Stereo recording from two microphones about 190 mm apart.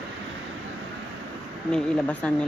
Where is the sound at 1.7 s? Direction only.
5° left (ahead or behind).